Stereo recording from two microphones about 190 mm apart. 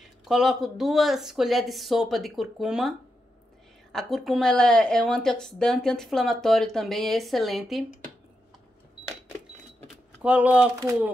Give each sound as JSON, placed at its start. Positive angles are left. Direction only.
{"t": 0.2, "sound": "speech", "side_deg": 0}
{"t": 3.9, "sound": "speech", "side_deg": 0}
{"t": 10.2, "sound": "speech", "side_deg": -5}